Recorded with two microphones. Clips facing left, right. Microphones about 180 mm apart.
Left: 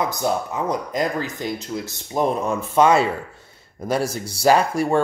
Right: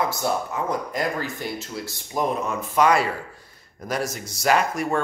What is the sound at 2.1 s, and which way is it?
Speech, 30° left (ahead or behind).